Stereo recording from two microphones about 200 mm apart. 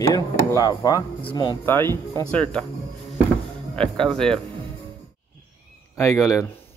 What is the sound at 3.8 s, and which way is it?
Speech, 5° left (ahead or behind).